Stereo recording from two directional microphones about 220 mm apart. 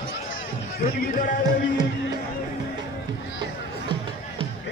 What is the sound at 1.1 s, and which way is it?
Music, 40° left (ahead or behind).